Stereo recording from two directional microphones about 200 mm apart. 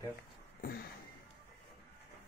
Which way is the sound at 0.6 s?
45° left (ahead or behind).